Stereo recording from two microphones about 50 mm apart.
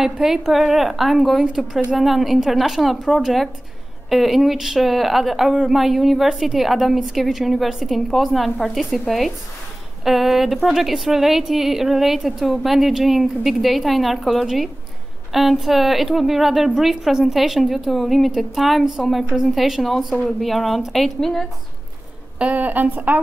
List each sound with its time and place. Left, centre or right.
0.0 s a woman's voice: centre
10.0 s a woman's voice: centre
22.4 s a woman's voice: right